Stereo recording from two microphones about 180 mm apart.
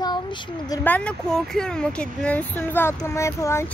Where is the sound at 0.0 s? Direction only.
25° left (ahead or behind).